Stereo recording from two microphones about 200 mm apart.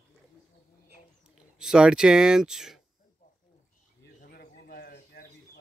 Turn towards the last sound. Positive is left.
turn(degrees=55)  # may be behind; listen again after turning